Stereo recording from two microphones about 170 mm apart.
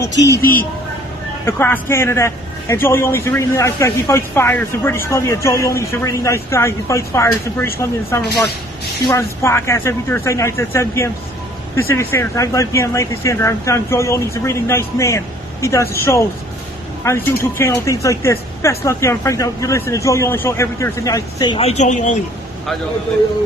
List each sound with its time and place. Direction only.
0.0 s a woman's voice: 20° left (ahead or behind)
17.0 s a man's voice: 15° left (ahead or behind)
21.5 s speech: 40° left (ahead or behind)